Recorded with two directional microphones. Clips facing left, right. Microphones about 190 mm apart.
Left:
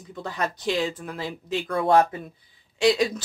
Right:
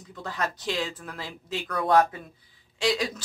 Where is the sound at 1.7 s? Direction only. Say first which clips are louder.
Left 2 dB; 25° left (ahead or behind).